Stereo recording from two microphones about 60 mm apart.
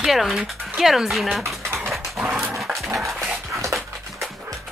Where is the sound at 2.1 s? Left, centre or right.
Centre.